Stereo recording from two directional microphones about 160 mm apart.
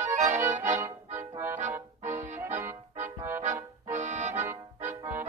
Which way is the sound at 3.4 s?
45° right (ahead or behind).